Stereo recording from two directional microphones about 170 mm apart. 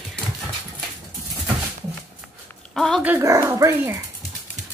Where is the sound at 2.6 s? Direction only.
5° left (ahead or behind).